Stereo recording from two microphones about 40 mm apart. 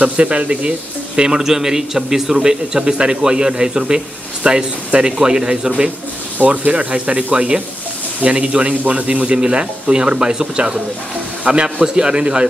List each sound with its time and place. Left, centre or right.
0.0 s speech: right; by 2.3 s centre
2.3 s speech: right
6.3 s speech: right